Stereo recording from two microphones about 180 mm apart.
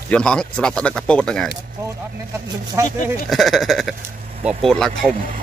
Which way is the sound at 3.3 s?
Centre (ahead or behind).